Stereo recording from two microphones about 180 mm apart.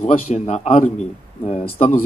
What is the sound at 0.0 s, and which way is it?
A man's voice, 45° left (ahead or behind).